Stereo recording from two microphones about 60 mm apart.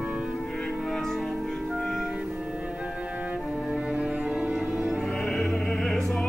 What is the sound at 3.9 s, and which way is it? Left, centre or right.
Cello, centre.